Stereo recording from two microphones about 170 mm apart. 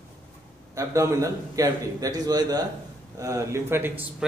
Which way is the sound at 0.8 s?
20° right (ahead or behind).